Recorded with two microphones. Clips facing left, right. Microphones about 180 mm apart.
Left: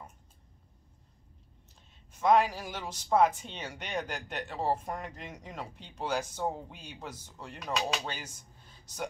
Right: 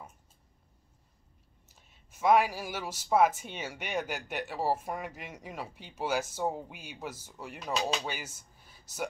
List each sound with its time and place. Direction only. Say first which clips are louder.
2.0 s speech: even; 5° right (ahead or behind)